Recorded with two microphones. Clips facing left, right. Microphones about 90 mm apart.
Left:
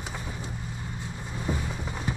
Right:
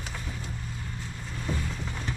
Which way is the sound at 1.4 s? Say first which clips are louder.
Left 2 dB; 15° left (ahead or behind).